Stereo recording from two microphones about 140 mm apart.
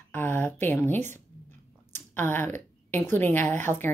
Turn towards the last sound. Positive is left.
turn(degrees=15)  # may be behind; listen again after turning